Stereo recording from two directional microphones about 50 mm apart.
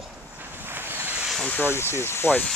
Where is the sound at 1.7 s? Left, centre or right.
Left.